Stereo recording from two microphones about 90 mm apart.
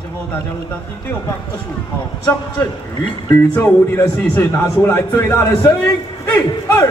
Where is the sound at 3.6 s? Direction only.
25° left (ahead or behind).